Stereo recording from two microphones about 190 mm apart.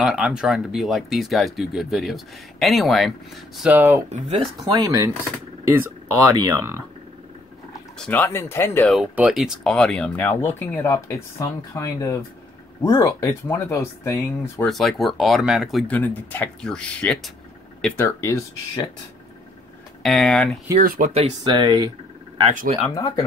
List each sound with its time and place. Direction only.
0.0 s speech: 5° right (ahead or behind)
8.0 s speech: 10° left (ahead or behind)
8.9 s speech: 5° right (ahead or behind); by 14.7 s 15° left (ahead or behind)
14.7 s speech: centre (ahead or behind)
15.9 s speech: 10° left (ahead or behind)
20.0 s speech: centre (ahead or behind)
20.8 s speech: 50° right (ahead or behind)
21.5 s speech: 20° right (ahead or behind)
22.5 s speech: 40° right (ahead or behind)
22.8 s speech: 20° left (ahead or behind)